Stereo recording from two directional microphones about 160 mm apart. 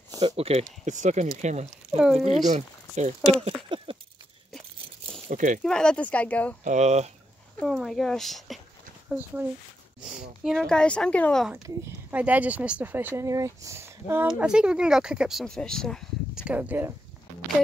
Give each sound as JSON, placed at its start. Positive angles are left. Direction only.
{"t": 0.2, "sound": "speech", "side_deg": -40}
{"t": 0.7, "sound": "speech", "side_deg": -50}
{"t": 2.0, "sound": "speech", "side_deg": -5}
{"t": 2.4, "sound": "speech", "side_deg": -50}
{"t": 3.3, "sound": "a sound", "side_deg": -30}
{"t": 5.3, "sound": "speech", "side_deg": -55}
{"t": 5.6, "sound": "speech", "side_deg": 5}
{"t": 6.6, "sound": "speech", "side_deg": -45}
{"t": 7.5, "sound": "speech", "side_deg": 0}
{"t": 9.1, "sound": "speech", "side_deg": -10}
{"t": 10.4, "sound": "speech", "side_deg": 0}
{"t": 11.5, "sound": "speech", "side_deg": -15}
{"t": 16.4, "sound": "speech", "side_deg": -10}